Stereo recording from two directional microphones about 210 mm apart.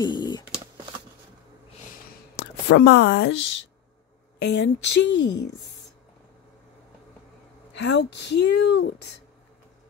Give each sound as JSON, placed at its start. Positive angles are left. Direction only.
{"t": 0.0, "sound": "typing", "side_deg": 20}
{"t": 2.3, "sound": "speech", "side_deg": 55}
{"t": 4.5, "sound": "a woman's voice", "side_deg": 60}
{"t": 7.7, "sound": "a woman's voice", "side_deg": 60}